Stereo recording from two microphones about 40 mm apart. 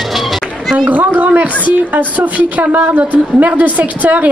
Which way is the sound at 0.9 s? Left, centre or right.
Right.